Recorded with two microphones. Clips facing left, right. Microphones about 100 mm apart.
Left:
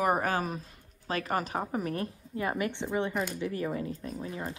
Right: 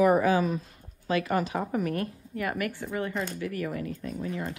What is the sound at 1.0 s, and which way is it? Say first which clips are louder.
Speech: right 4 dB; 35° left (ahead or behind).